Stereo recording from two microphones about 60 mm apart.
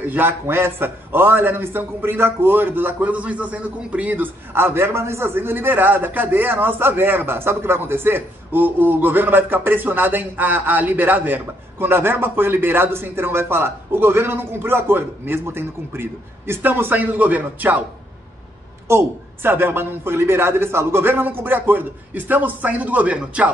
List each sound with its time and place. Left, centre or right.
0.0 s a man's voice: right
4.6 s a man's voice: right
18.9 s a man's voice: right; by 23.5 s centre